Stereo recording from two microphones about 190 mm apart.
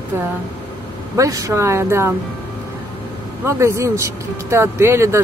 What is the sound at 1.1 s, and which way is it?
Speech, 15° right (ahead or behind).